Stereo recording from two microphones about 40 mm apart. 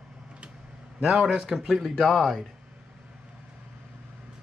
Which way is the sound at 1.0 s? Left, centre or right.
Centre.